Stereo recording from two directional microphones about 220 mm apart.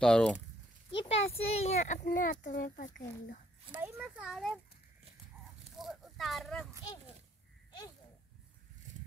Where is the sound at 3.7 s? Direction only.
5° right (ahead or behind).